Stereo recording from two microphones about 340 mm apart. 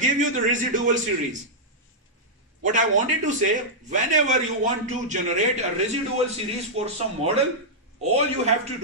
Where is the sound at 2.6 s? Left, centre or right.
Right.